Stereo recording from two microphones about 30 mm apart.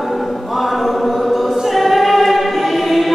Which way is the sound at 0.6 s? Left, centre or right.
Centre.